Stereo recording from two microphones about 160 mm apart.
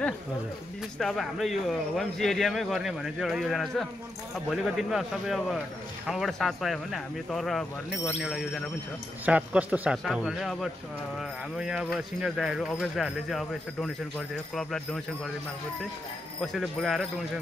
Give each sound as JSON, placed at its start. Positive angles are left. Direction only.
{"t": 0.9, "sound": "speech", "side_deg": 0}
{"t": 16.3, "sound": "speech", "side_deg": 0}